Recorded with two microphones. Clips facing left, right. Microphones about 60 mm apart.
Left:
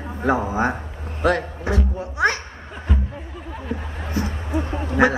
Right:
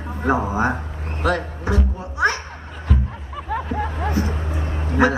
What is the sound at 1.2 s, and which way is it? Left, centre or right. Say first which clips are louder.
Speech: left 2 dB; left.